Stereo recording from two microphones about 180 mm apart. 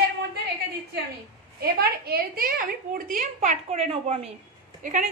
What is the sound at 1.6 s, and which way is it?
A woman's voice, 60° right (ahead or behind).